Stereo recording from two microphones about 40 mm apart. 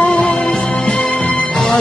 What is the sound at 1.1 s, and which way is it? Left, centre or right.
Music, left.